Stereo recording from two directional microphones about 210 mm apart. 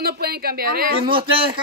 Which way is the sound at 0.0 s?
45° right (ahead or behind).